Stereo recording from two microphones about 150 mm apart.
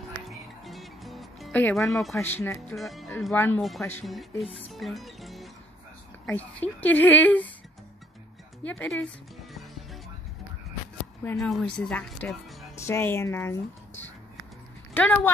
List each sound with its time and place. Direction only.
0.3 s music: centre (ahead or behind)
1.5 s speech: 15° left (ahead or behind)
2.1 s speech: 15° left (ahead or behind)
2.7 s speech: centre (ahead or behind)
3.3 s speech: 15° left (ahead or behind)
4.0 s speech: centre (ahead or behind)
4.5 s music: 40° left (ahead or behind)
4.7 s speech: centre (ahead or behind)
6.2 s speech: 10° left (ahead or behind)
8.6 s speech: 10° left (ahead or behind)
11.3 s speech: 5° left (ahead or behind)
12.7 s speech: 15° left (ahead or behind)
15.0 s speech: 10° left (ahead or behind)